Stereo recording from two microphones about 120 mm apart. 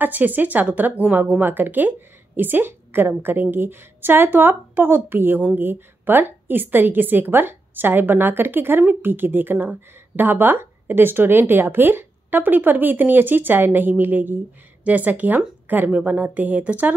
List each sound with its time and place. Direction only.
0.0 s speech: 15° right (ahead or behind)